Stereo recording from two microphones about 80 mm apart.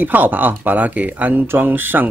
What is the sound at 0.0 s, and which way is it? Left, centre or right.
Speech, right.